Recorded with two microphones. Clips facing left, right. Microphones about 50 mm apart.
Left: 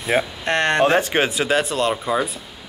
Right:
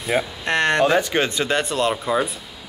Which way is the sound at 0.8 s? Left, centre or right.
Left.